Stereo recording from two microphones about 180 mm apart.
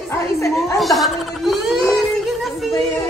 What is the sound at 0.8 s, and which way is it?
A woman's voice, centre (ahead or behind).